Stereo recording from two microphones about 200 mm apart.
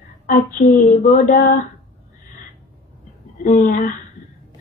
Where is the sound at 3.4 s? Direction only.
40° left (ahead or behind).